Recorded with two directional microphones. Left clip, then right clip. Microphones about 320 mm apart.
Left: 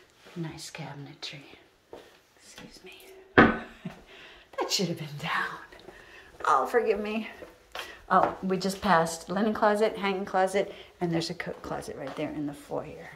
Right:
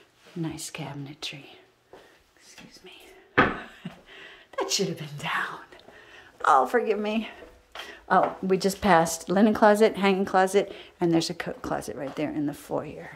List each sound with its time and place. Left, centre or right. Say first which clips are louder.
0.4 s a woman's voice: right 5 dB; right
3.8 s a sound: right 2 dB; centre
6.4 s a woman's voice: right 3 dB; centre
9.0 s speech: right 3 dB; right
9.3 s a woman's voice: right 6 dB; right